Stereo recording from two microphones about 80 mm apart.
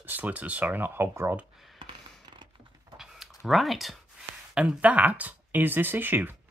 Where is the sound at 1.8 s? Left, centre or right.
Right.